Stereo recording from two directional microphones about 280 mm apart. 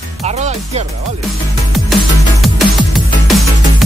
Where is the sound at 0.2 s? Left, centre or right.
Right.